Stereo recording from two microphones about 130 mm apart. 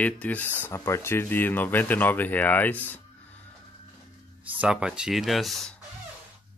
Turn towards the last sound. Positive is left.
turn(degrees=0)  # may be behind; listen again after turning